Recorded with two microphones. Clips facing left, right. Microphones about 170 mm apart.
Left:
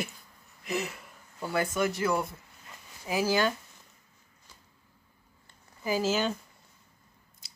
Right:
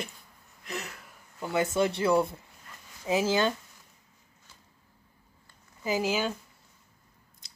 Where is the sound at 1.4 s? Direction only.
25° right (ahead or behind).